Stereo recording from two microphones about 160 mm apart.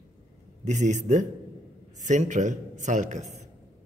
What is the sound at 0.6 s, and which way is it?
A man's voice, 45° right (ahead or behind).